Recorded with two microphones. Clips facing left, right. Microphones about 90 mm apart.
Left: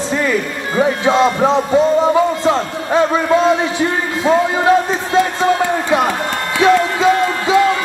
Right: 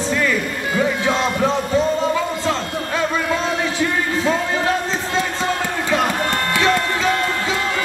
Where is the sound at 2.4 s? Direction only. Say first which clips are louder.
Left 6 dB; 20° left (ahead or behind).